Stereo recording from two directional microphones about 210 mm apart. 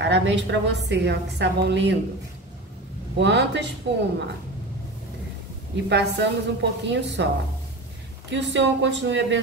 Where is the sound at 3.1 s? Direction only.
55° right (ahead or behind).